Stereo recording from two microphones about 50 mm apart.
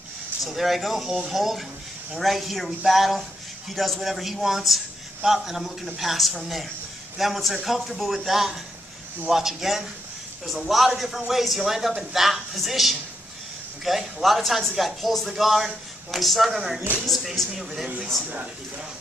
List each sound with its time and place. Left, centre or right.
0.4 s speech: centre
14.1 s speech: centre